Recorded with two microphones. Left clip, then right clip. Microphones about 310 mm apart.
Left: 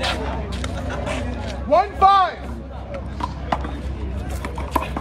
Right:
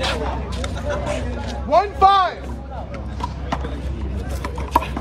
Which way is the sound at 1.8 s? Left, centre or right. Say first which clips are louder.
Right 1 dB; centre.